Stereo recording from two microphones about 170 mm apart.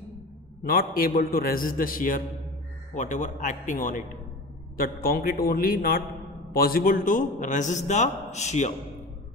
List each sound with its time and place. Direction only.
0.7 s a man's voice: 60° left (ahead or behind); by 8.7 s 45° left (ahead or behind)